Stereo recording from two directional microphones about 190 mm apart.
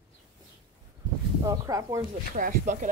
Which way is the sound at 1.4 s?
20° right (ahead or behind).